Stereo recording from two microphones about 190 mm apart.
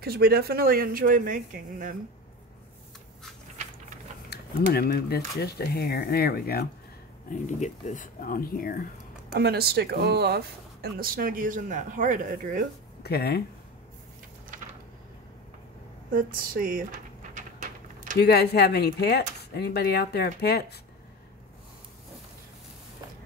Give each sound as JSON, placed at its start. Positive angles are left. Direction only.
{"t": 0.0, "sound": "speech", "side_deg": -55}
{"t": 4.3, "sound": "speech", "side_deg": 55}
{"t": 7.2, "sound": "speech", "side_deg": 40}
{"t": 9.3, "sound": "speech", "side_deg": -55}
{"t": 13.0, "sound": "speech", "side_deg": 55}
{"t": 14.5, "sound": "a sound", "side_deg": -45}
{"t": 16.1, "sound": "a sound", "side_deg": -45}
{"t": 18.2, "sound": "speech", "side_deg": 60}